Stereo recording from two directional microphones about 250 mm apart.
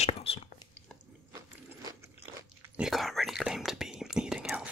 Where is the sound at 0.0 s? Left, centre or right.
Left.